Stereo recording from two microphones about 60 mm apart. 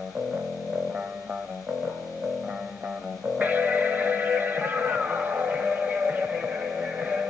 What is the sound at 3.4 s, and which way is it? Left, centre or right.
Music, right.